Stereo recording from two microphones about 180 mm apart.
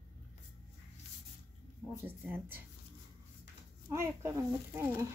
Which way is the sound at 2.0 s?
10° right (ahead or behind).